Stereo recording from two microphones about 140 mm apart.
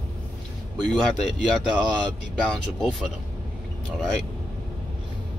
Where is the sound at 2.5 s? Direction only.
Centre (ahead or behind).